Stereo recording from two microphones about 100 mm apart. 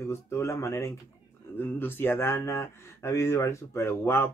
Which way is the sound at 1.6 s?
20° left (ahead or behind).